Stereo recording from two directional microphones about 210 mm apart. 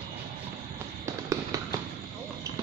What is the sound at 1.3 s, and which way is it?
Fireworks, 15° right (ahead or behind).